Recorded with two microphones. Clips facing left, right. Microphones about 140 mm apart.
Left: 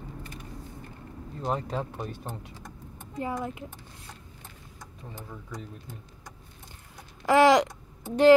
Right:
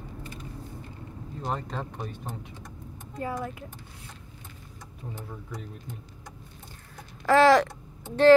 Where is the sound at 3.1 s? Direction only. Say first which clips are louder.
Left 1 dB; 15° left (ahead or behind).